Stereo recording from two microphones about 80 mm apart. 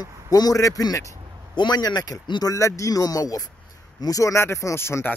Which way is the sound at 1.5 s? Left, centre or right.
Left.